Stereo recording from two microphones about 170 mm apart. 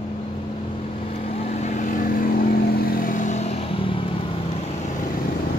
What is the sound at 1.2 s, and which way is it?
Vehicle, 40° left (ahead or behind).